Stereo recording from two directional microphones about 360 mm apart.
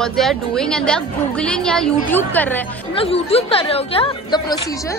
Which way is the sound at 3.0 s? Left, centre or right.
Centre.